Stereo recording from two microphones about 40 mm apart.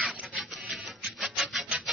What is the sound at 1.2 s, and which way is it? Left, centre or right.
Rub, centre.